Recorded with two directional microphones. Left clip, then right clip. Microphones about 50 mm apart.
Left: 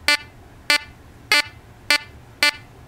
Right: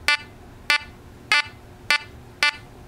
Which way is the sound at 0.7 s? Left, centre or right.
Left.